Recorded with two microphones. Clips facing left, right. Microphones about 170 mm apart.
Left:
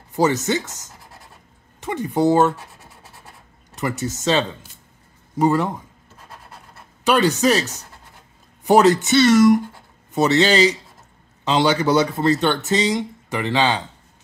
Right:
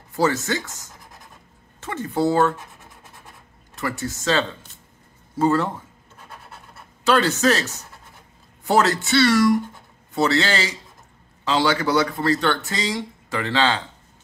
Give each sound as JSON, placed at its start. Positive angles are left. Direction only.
{"t": 0.1, "sound": "speech", "side_deg": 20}
{"t": 3.7, "sound": "speech", "side_deg": 20}
{"t": 7.1, "sound": "speech", "side_deg": 15}